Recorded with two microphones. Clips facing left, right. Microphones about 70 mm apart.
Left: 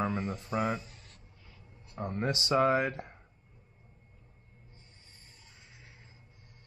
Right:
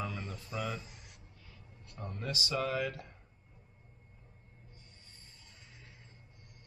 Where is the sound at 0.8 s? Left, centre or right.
Centre.